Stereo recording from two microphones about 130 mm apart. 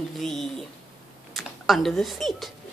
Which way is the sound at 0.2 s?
Centre (ahead or behind).